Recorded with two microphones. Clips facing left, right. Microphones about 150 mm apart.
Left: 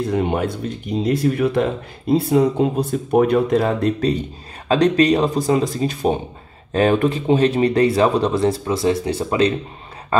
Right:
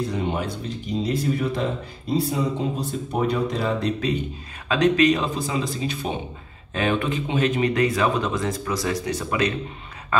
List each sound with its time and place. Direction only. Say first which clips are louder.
0.1 s speech: left 6 dB; 55° left (ahead or behind)
4.6 s speech: left 3 dB; 35° left (ahead or behind)